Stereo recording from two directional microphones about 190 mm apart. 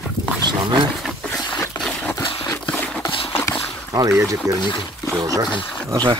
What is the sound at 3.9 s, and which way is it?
Speech, 15° right (ahead or behind).